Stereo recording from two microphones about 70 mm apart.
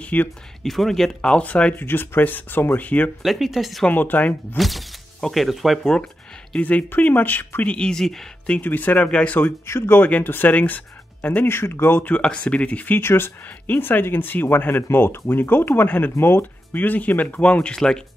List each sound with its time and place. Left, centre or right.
0.0 s speech: left
0.6 s speech: centre
1.4 s speech: centre
3.2 s speech: centre
3.8 s speech: left
4.6 s speech: centre
6.6 s speech: left
7.7 s speech: centre
8.5 s speech: left
9.7 s speech: left
11.4 s speech: left
12.0 s speech: centre
13.0 s speech: left; by 18.0 s centre